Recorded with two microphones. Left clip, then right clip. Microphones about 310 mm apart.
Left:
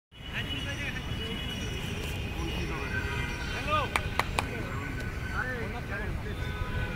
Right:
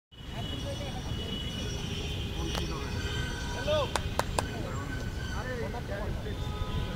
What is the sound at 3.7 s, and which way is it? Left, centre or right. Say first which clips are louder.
Chop: left 2 dB; right.